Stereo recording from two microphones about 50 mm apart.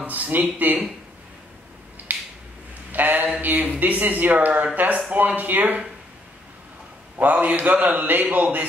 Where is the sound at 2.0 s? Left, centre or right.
Right.